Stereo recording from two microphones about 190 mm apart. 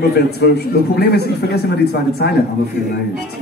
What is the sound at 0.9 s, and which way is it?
Speech, 60° left (ahead or behind).